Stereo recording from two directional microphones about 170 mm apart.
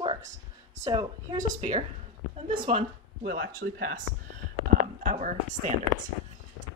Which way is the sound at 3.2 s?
60° right (ahead or behind).